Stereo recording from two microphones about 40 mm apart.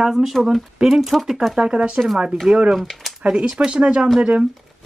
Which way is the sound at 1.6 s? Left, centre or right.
Right.